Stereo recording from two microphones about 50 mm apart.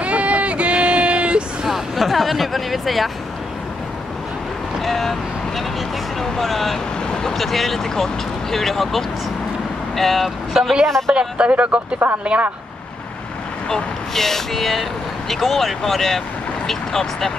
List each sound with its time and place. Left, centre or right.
0.0 s a sound: right
1.6 s a sound: centre
2.0 s speech: centre
4.8 s speech: centre
6.2 s speech: centre
11.1 s speech: right
13.7 s speech: centre